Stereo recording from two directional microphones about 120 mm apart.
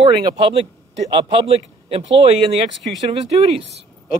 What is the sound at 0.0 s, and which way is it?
Speech, 45° right (ahead or behind).